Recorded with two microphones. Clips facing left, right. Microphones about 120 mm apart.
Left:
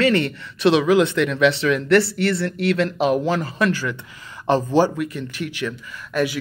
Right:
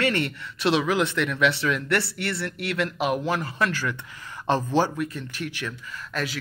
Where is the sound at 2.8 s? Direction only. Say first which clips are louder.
Left 3 dB; 30° left (ahead or behind).